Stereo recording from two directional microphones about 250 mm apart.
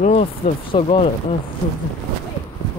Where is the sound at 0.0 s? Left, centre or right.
Left.